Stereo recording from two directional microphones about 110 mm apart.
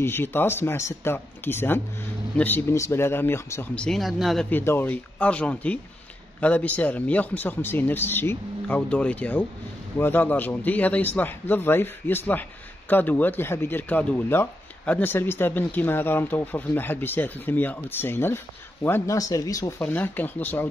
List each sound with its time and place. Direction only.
0.0 s speech: 20° left (ahead or behind)
3.7 s speech: 5° left (ahead or behind)
4.5 s speech: 20° left (ahead or behind)
19.8 s speech: 15° left (ahead or behind)